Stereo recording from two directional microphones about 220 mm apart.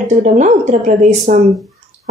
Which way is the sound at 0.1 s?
35° right (ahead or behind).